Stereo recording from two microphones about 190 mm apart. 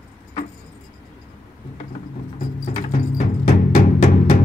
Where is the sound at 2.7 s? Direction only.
40° left (ahead or behind).